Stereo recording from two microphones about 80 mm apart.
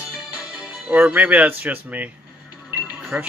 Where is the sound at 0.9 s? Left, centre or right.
Right.